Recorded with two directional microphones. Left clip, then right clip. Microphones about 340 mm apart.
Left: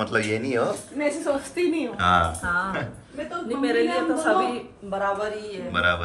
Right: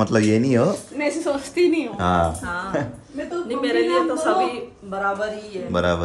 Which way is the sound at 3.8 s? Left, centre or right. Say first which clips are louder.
Right 3 dB; centre.